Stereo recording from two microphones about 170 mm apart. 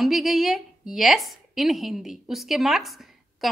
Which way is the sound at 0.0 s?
Centre (ahead or behind).